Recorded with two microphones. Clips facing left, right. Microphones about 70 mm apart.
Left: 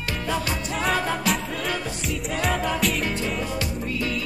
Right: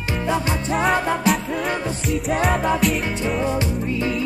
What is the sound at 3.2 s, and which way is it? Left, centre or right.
Music, right.